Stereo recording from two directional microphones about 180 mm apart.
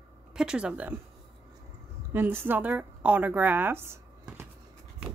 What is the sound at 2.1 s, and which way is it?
A woman's voice, 10° right (ahead or behind).